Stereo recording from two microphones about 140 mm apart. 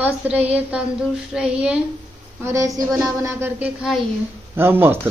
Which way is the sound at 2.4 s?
20° right (ahead or behind).